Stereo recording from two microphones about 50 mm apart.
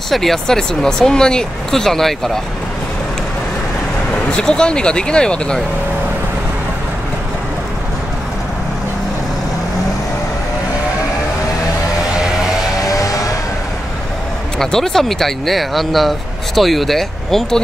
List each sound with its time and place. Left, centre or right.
0.1 s speech: centre
4.1 s speech: left
14.6 s speech: centre